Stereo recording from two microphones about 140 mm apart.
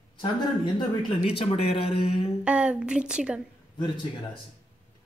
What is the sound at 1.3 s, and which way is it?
Speech, 40° left (ahead or behind).